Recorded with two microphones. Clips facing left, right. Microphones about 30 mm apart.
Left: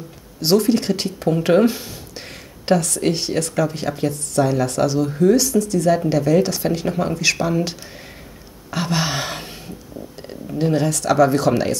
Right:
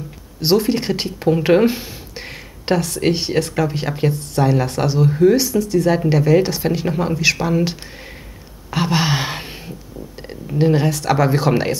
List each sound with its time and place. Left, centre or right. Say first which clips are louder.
0.4 s speech: even; centre
8.6 s a sound: right 3 dB; centre
10.2 s speech: right 4 dB; centre